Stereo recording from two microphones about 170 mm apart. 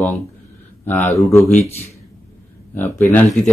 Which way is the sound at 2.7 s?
15° left (ahead or behind).